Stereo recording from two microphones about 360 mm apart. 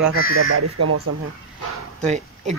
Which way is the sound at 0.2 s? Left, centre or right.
Right.